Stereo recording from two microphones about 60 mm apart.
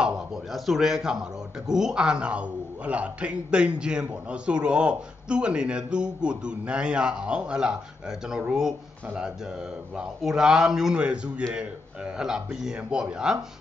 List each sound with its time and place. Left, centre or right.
0.0 s a man's voice: centre